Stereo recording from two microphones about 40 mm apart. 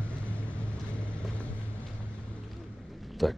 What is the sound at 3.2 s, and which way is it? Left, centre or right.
Speech, centre.